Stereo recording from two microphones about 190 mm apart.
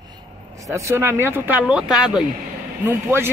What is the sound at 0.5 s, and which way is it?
Speech, 15° right (ahead or behind).